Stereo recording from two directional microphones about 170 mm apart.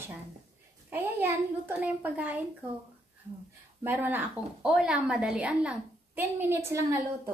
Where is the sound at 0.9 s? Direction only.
15° right (ahead or behind).